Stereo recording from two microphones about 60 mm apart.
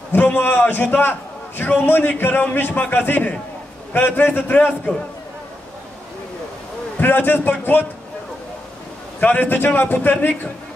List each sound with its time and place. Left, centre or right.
0.1 s a man's voice: left
7.0 s a man's voice: left
9.2 s a man's voice: left